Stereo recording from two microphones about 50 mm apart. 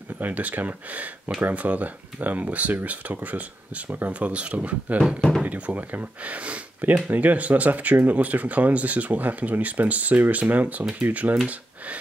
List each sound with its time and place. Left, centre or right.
0.2 s speech: right